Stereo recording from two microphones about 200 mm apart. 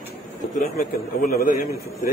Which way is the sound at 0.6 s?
40° left (ahead or behind).